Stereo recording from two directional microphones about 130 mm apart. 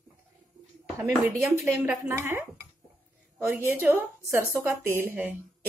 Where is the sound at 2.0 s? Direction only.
20° right (ahead or behind).